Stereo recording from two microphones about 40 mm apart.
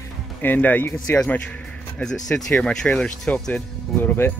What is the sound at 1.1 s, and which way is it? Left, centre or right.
Speech, left.